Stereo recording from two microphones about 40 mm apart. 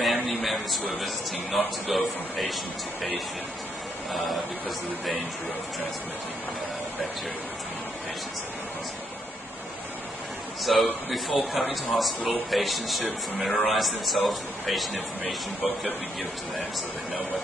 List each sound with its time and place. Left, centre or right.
0.0 s a man's voice: centre
4.1 s speech: centre
10.6 s speech: centre